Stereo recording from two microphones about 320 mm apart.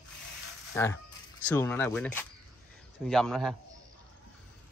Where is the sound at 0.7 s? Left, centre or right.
Centre.